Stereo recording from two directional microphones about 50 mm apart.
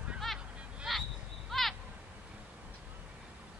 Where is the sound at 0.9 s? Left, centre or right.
Centre.